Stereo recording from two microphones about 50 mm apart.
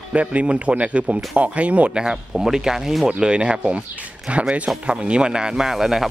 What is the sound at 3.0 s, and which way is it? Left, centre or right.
Speech, centre.